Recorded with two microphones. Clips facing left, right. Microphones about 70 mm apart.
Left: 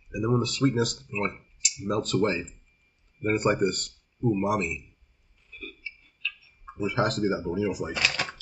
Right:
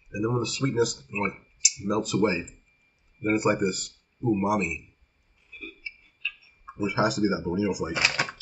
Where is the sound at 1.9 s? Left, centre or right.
Centre.